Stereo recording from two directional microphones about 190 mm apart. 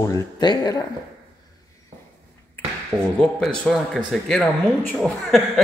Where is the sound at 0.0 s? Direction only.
20° left (ahead or behind).